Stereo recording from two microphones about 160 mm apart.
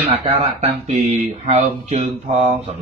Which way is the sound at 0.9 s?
40° right (ahead or behind).